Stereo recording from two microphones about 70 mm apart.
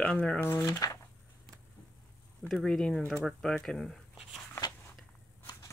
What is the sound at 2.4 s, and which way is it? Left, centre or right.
Speech, centre.